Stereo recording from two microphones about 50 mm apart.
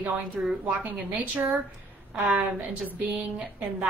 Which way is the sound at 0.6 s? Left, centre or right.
Right.